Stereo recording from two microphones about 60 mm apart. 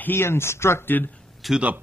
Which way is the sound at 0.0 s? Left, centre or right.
Left.